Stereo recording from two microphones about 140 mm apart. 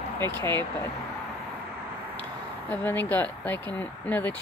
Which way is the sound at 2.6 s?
15° left (ahead or behind).